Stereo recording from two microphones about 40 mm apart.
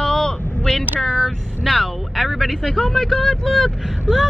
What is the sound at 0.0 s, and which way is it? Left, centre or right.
Vehicle, centre.